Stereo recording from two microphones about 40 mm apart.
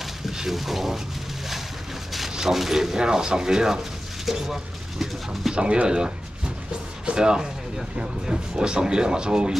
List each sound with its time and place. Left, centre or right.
0.0 s a sound: centre
2.3 s speech: centre
5.5 s speech: right